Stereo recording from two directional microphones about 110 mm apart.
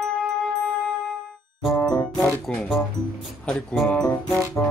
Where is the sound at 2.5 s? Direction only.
10° left (ahead or behind).